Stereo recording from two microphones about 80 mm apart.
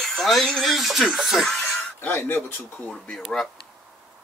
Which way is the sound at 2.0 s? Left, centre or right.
Left.